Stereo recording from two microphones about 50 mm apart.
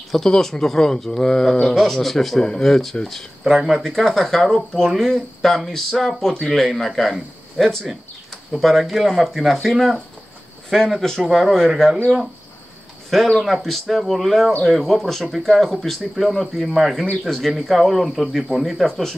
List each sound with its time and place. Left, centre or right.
0.1 s speech: centre
3.5 s speech: centre
3.8 s speech: centre
13.4 s speech: centre